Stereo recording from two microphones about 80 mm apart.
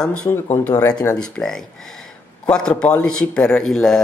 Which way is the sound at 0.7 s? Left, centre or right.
Left.